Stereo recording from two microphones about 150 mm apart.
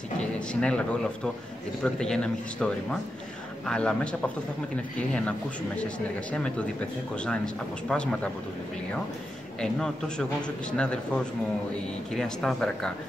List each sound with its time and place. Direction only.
0.2 s a man's voice: 5° left (ahead or behind)
9.6 s a man's voice: 5° left (ahead or behind)
12.1 s a man's voice: centre (ahead or behind)